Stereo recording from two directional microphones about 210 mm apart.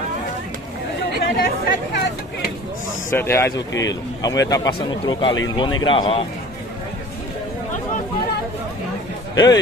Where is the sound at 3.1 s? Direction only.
10° left (ahead or behind).